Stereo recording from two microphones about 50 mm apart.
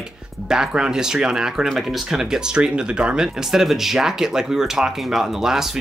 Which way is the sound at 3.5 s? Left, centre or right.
Centre.